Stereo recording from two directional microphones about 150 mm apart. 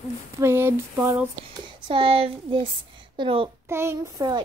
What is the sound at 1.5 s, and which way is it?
A child's voice, 35° right (ahead or behind).